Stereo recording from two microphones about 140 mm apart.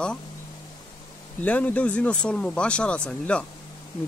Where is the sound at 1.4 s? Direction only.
10° left (ahead or behind).